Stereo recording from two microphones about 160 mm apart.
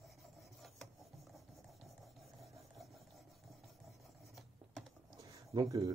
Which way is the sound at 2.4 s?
Centre (ahead or behind).